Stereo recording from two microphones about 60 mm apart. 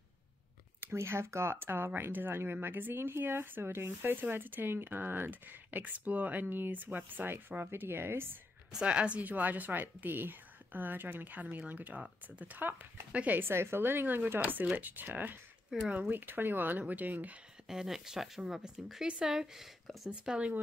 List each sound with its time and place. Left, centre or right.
0.9 s speech: right
8.7 s a woman's voice: centre
13.4 s speech: right
15.7 s speech: centre
16.1 s speech: right
17.6 s speech: centre
20.1 s a woman's voice: centre